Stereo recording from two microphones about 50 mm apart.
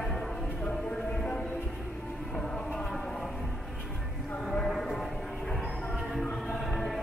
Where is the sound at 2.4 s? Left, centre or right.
Centre.